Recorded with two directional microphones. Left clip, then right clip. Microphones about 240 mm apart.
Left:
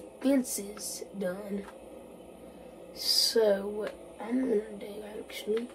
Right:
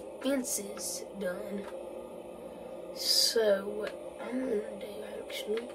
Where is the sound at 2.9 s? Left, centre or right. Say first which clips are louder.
Left 2 dB; left.